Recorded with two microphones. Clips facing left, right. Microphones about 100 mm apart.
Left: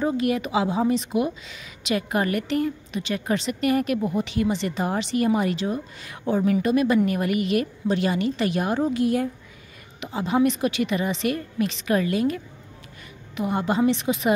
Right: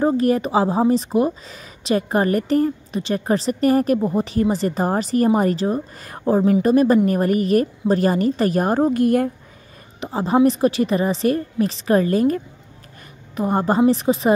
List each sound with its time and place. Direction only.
0.0 s a woman's voice: 35° right (ahead or behind)
9.9 s a woman's voice: 35° right (ahead or behind)
13.4 s a woman's voice: 40° right (ahead or behind)